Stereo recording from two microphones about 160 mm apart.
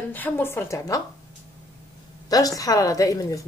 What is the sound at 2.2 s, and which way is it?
A woman's voice, 20° left (ahead or behind).